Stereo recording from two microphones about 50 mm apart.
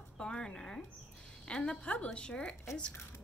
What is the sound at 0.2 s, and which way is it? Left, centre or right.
A woman's voice, centre.